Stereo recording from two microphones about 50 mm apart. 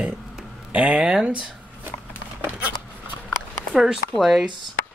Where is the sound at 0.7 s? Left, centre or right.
Right.